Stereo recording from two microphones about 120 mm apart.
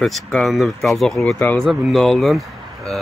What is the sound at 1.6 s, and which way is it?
Speech, centre (ahead or behind).